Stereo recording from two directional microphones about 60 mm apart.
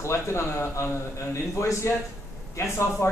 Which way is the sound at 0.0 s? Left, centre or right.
Left.